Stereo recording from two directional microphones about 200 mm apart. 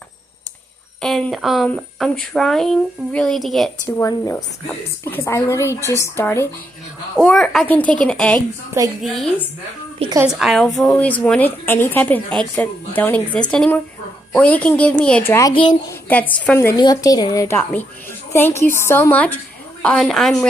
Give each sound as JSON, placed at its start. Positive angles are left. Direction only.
{"t": 1.0, "sound": "speech", "side_deg": 0}
{"t": 3.8, "sound": "speech", "side_deg": 15}
{"t": 8.4, "sound": "a woman's voice", "side_deg": -15}
{"t": 9.0, "sound": "speech", "side_deg": 0}
{"t": 10.0, "sound": "a woman's voice", "side_deg": -30}
{"t": 10.4, "sound": "a woman's voice", "side_deg": 0}